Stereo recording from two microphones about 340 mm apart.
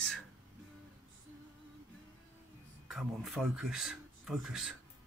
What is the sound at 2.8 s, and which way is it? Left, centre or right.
Speech, centre.